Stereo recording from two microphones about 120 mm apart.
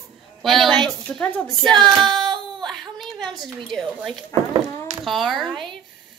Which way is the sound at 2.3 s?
Centre (ahead or behind).